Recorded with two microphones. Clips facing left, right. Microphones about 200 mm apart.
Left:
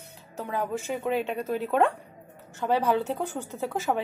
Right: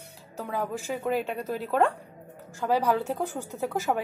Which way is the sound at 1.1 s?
5° right (ahead or behind).